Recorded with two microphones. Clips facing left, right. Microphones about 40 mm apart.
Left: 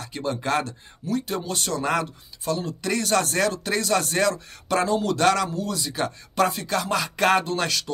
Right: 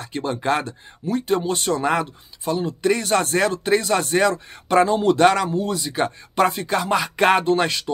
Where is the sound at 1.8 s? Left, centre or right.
Centre.